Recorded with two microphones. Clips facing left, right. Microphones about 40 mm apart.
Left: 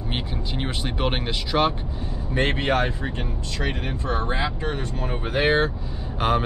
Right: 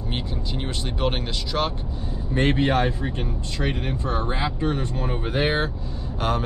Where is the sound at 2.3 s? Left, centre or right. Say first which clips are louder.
Right 2 dB; left.